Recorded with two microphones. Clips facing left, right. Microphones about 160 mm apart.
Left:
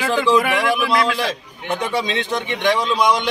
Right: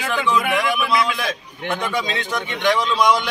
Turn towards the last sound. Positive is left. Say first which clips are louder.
# even
turn(degrees=25)  # may be behind; listen again after turning